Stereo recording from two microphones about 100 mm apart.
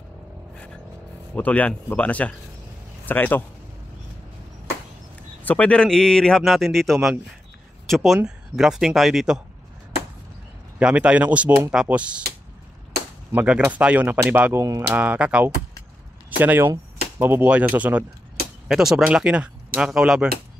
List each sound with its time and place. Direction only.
1.3 s a man's voice: 15° left (ahead or behind)
5.4 s speech: 15° left (ahead or behind); by 9.4 s 5° right (ahead or behind)
10.8 s speech: 10° right (ahead or behind)
13.3 s speech: 15° right (ahead or behind)
18.7 s speech: 5° right (ahead or behind)